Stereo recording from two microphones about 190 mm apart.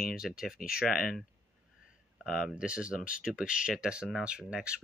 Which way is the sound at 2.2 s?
Centre (ahead or behind).